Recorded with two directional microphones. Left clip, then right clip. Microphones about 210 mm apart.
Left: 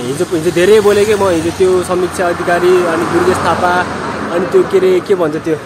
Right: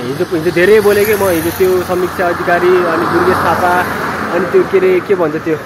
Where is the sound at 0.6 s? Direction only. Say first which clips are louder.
Even; 5° left (ahead or behind).